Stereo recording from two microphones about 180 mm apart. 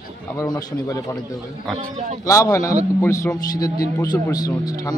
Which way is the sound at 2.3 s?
20° left (ahead or behind).